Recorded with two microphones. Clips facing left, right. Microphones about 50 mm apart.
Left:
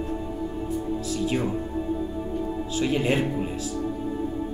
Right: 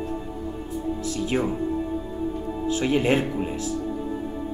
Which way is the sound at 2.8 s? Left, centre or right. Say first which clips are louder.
Right 2 dB; right.